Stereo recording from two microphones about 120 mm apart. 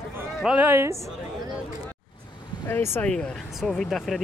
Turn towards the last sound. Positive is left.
turn(degrees=5)  # may be behind; listen again after turning